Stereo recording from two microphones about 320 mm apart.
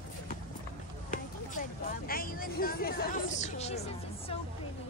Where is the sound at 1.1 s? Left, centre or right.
Left.